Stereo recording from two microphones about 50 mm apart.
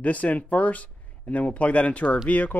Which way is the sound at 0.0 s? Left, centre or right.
Left.